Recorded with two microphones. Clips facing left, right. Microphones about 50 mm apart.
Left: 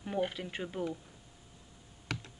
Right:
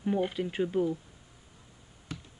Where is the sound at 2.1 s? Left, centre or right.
Left.